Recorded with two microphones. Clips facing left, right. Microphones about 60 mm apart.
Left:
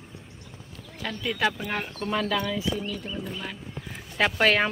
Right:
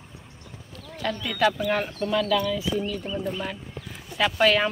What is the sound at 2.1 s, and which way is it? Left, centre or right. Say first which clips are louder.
Speech: right 3 dB; left.